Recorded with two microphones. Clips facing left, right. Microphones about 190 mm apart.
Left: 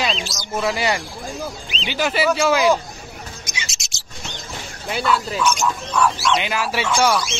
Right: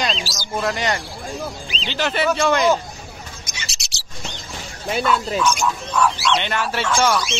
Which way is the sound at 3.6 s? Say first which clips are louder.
Even; 35° right (ahead or behind).